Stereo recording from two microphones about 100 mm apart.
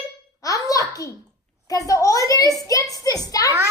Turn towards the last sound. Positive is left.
turn(degrees=40)  # may be behind; listen again after turning